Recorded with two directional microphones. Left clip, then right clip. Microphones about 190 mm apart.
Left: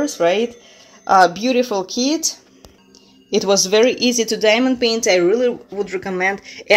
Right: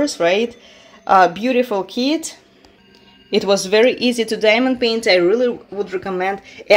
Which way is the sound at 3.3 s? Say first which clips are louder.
Even; centre (ahead or behind).